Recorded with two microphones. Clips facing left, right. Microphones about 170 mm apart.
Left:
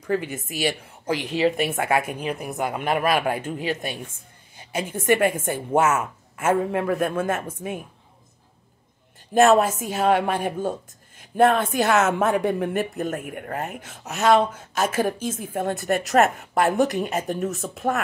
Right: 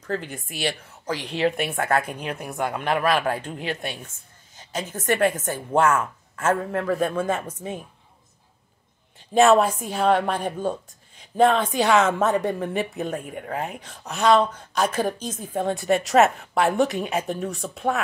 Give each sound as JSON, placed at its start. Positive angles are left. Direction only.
{"t": 0.0, "sound": "a woman's voice", "side_deg": 10}
{"t": 0.8, "sound": "a sound", "side_deg": 25}
{"t": 1.2, "sound": "a woman's voice", "side_deg": 0}
{"t": 9.3, "sound": "speech", "side_deg": 0}
{"t": 11.9, "sound": "a woman's voice", "side_deg": 10}